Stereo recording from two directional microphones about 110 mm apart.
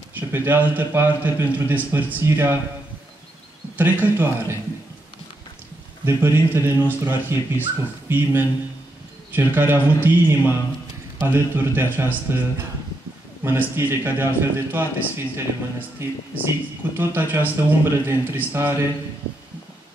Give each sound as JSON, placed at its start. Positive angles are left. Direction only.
{"t": 0.1, "sound": "speech", "side_deg": -15}
{"t": 3.7, "sound": "speech", "side_deg": -15}
{"t": 6.0, "sound": "speech", "side_deg": -25}